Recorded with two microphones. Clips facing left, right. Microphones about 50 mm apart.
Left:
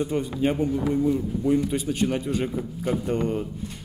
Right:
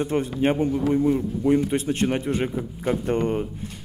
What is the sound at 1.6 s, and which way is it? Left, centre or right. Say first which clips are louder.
Mantra: right 2 dB; right.